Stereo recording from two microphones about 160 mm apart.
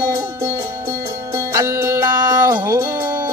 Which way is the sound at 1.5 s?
20° right (ahead or behind).